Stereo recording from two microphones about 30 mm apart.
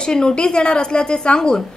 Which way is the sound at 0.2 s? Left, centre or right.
Left.